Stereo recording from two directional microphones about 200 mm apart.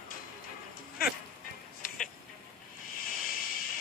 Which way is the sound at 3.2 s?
45° left (ahead or behind).